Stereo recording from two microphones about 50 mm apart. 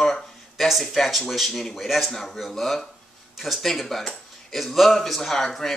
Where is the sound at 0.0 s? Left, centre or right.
Centre.